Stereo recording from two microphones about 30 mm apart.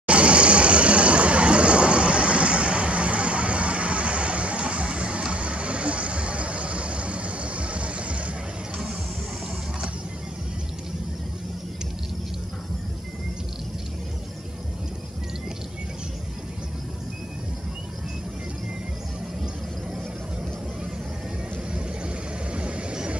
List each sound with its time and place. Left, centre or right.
0.0 s vehicle: right
21.7 s vehicle: right